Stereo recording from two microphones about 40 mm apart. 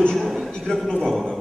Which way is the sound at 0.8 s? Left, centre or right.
Centre.